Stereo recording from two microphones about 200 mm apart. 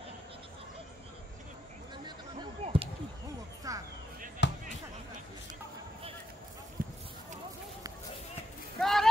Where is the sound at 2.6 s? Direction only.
30° right (ahead or behind).